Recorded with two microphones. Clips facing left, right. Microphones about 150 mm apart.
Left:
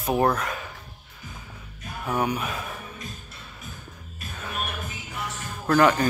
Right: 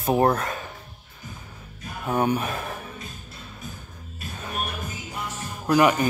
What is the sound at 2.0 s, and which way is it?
Speech, 25° right (ahead or behind).